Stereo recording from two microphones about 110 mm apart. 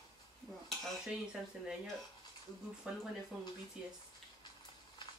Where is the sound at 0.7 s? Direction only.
5° right (ahead or behind).